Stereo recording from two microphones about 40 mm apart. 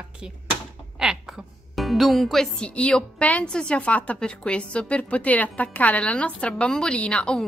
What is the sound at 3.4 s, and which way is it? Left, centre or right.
Speech, left.